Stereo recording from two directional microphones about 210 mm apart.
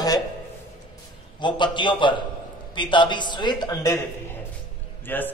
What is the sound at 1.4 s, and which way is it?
A man's voice, 20° left (ahead or behind).